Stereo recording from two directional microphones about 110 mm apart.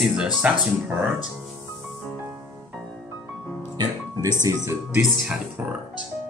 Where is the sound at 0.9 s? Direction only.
15° right (ahead or behind).